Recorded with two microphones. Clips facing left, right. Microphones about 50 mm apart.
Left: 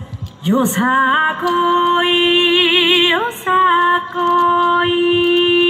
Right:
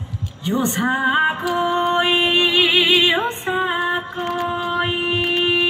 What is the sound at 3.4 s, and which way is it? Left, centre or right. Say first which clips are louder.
Music: left 8 dB; left.